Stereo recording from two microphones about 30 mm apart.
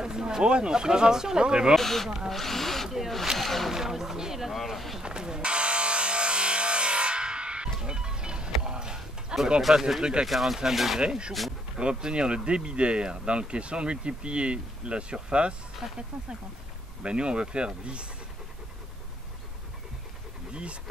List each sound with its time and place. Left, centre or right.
0.0 s a sound: right
0.5 s speech: right
1.8 s speech: centre
3.7 s speech: centre
4.2 s a sound: centre
4.7 s speech: centre
5.0 s vehicle: right
9.6 s speech: centre
11.0 s speech: right
17.0 s speech: right